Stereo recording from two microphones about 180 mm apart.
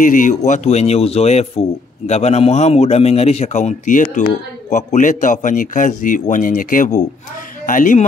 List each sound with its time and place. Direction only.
0.0 s speech: 45° left (ahead or behind)